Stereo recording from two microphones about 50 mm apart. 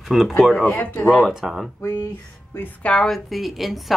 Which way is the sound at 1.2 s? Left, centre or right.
Centre.